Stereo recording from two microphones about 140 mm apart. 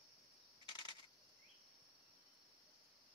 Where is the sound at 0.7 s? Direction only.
35° left (ahead or behind).